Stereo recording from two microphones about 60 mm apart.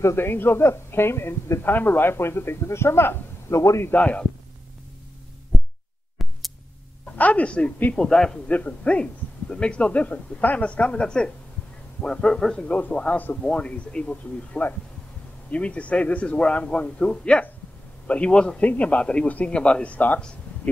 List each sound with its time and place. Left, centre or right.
0.0 s a man's voice: left
3.9 s speech: left
6.2 s a sound: centre
7.2 s a man's voice: left
8.5 s a man's voice: left